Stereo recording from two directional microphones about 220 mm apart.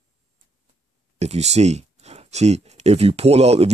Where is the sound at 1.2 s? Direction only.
30° right (ahead or behind).